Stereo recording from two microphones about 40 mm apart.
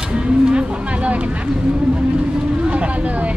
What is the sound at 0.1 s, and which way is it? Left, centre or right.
Music, right.